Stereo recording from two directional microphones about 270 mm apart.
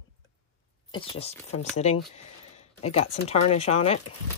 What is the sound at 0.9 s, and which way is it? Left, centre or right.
Speech, centre.